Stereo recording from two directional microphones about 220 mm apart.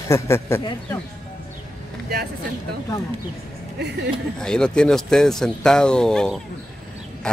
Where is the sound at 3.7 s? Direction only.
50° right (ahead or behind).